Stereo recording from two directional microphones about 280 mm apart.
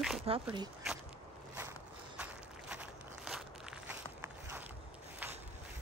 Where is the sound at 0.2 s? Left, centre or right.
Centre.